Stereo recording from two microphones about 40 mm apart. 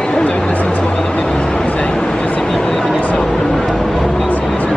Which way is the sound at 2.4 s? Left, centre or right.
Centre.